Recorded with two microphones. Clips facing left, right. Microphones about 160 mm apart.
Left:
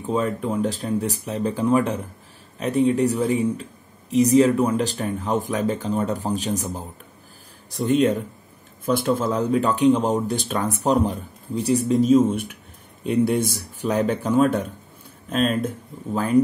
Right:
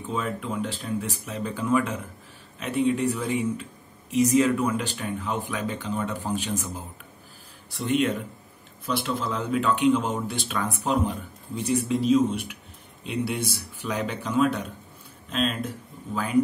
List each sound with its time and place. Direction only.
0.0 s speech: 35° left (ahead or behind)